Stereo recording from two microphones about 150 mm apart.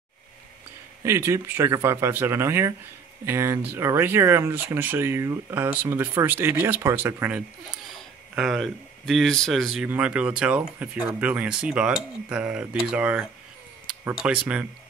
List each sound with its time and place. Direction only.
1.0 s speech: 20° right (ahead or behind)
8.4 s speech: centre (ahead or behind)